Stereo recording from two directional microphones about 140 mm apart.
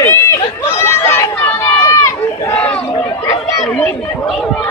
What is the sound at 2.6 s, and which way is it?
Chatter, 10° left (ahead or behind).